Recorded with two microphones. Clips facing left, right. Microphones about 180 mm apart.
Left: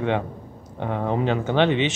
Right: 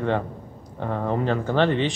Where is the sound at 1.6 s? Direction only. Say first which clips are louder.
Left 1 dB; 75° left (ahead or behind).